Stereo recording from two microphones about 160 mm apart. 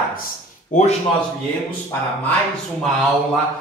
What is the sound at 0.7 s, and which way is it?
Speech, 50° left (ahead or behind).